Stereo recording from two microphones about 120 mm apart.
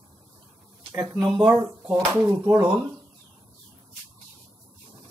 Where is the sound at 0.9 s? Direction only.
10° right (ahead or behind).